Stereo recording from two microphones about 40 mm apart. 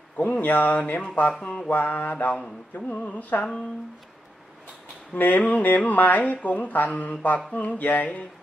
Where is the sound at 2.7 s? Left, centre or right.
Left.